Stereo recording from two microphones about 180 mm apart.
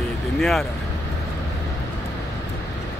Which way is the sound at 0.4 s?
Centre (ahead or behind).